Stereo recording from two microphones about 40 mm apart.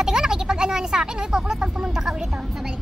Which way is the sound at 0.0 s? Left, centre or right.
Centre.